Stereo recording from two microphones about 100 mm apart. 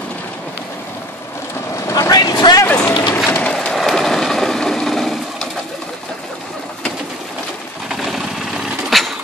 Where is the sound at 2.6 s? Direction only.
15° left (ahead or behind).